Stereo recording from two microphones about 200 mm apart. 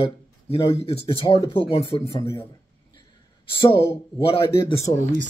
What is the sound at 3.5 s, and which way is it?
Speech, 25° left (ahead or behind).